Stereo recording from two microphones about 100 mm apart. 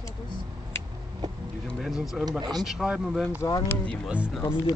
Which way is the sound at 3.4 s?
35° left (ahead or behind).